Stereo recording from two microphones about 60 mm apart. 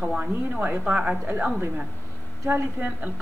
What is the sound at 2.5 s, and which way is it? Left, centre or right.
Speech, right.